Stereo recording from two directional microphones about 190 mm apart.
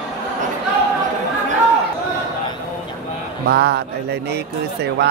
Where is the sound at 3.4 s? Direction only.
55° right (ahead or behind).